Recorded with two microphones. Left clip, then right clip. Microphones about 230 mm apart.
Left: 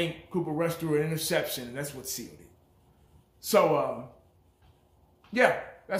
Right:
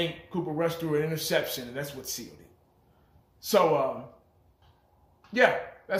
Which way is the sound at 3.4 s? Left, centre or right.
Centre.